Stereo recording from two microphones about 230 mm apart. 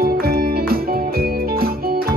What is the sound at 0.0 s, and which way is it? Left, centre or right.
Music, right.